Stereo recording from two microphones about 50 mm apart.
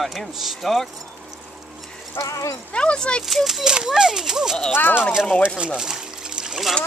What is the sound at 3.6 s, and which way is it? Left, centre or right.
Speech, centre.